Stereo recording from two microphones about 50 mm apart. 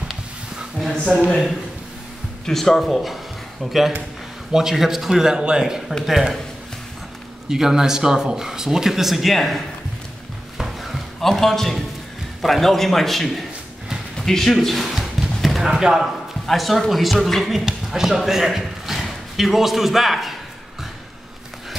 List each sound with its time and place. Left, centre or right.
1.0 s speech: left
2.4 s a man's voice: centre
4.5 s a man's voice: centre
7.4 s speech: centre
10.6 s a sound: centre
12.4 s a man's voice: centre
14.5 s a sound: centre
15.7 s a man's voice: centre